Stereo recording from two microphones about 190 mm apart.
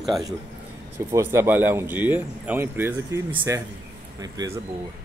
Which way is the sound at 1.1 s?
15° right (ahead or behind).